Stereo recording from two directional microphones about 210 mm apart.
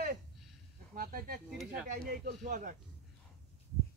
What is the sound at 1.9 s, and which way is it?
Speech, 45° right (ahead or behind).